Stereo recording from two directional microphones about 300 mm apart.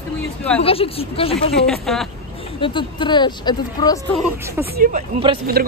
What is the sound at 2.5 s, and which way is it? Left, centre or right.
Speech, centre.